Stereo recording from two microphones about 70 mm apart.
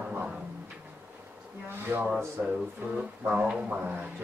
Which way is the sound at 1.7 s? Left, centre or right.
Right.